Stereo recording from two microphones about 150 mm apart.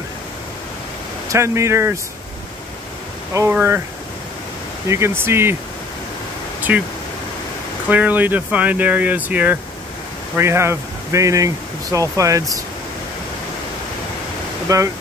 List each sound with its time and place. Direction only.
1.3 s speech: 20° right (ahead or behind)
3.3 s speech: 15° right (ahead or behind)
4.8 s speech: 20° right (ahead or behind)
6.7 s speech: 10° right (ahead or behind)
7.9 s speech: 10° right (ahead or behind)
14.7 s speech: 20° right (ahead or behind)